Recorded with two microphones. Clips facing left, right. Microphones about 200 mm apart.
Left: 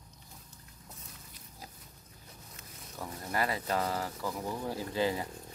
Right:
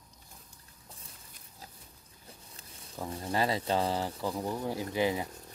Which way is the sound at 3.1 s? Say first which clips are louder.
Right 3 dB; 30° right (ahead or behind).